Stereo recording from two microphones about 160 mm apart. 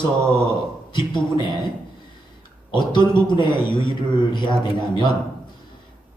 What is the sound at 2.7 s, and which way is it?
A man's voice, 30° left (ahead or behind).